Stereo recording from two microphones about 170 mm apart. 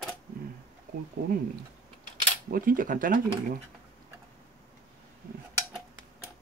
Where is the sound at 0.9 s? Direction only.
55° right (ahead or behind).